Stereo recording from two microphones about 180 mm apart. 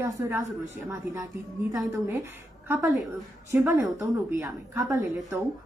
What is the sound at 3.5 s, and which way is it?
Speech, 15° right (ahead or behind).